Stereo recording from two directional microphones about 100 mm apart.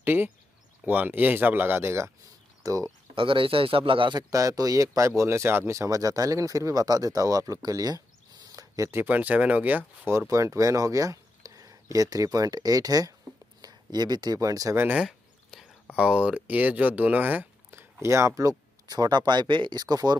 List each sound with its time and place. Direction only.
0.0 s speech: 20° right (ahead or behind)
2.6 s speech: 35° right (ahead or behind)
3.2 s speech: 60° right (ahead or behind)
4.2 s speech: 35° right (ahead or behind)
8.5 s a sound: 35° right (ahead or behind)
8.9 s speech: 20° right (ahead or behind); by 14.8 s 35° right (ahead or behind)
15.0 s a sound: 5° right (ahead or behind)
16.0 s speech: 10° right (ahead or behind); by 20.2 s 40° right (ahead or behind)